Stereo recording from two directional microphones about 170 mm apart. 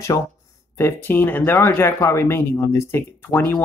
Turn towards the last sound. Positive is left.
turn(degrees=10)  # may be behind; listen again after turning